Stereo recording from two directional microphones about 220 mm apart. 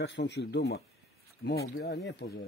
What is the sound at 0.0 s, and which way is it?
A man's voice, 50° left (ahead or behind).